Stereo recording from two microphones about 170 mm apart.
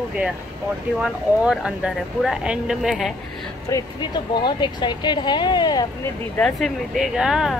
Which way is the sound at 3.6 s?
20° left (ahead or behind).